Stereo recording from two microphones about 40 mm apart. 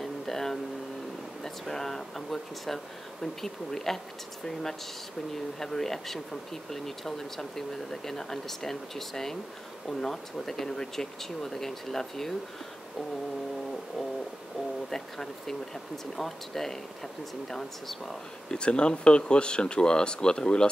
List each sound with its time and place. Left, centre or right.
0.0 s a sound: centre
1.4 s speech: centre
5.6 s speech: centre
14.9 s speech: centre
18.5 s speech: left